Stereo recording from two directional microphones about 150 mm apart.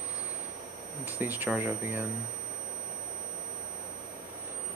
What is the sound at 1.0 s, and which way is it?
Speech, 10° right (ahead or behind).